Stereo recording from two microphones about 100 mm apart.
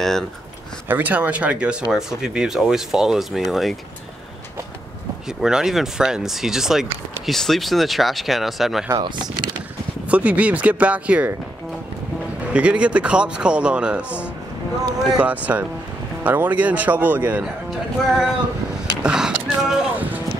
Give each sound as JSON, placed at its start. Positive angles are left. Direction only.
{"t": 0.8, "sound": "a man's voice", "side_deg": -15}
{"t": 5.4, "sound": "speech", "side_deg": -5}
{"t": 8.9, "sound": "speech", "side_deg": -45}
{"t": 10.0, "sound": "a man's voice", "side_deg": -15}
{"t": 12.5, "sound": "a man's voice", "side_deg": -10}
{"t": 17.6, "sound": "speech", "side_deg": 0}
{"t": 19.0, "sound": "a sound", "side_deg": -10}